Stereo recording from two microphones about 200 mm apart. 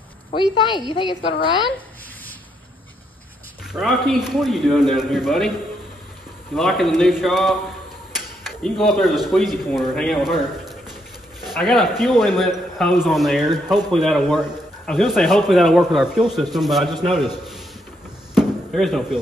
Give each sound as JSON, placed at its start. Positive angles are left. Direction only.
{"t": 0.3, "sound": "a woman's voice", "side_deg": 25}
{"t": 3.7, "sound": "speech", "side_deg": 0}
{"t": 6.5, "sound": "speech", "side_deg": 0}
{"t": 18.3, "sound": "chop", "side_deg": 0}